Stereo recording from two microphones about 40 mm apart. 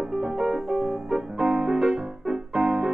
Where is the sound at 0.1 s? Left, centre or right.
Centre.